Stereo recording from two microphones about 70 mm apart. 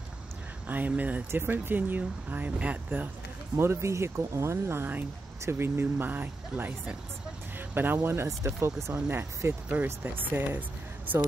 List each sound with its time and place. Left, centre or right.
0.7 s speech: right
3.5 s speech: right